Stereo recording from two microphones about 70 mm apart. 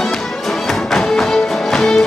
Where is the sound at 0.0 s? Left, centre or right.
Centre.